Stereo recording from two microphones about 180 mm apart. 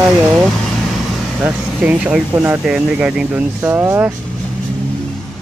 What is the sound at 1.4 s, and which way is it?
Speech, 5° right (ahead or behind).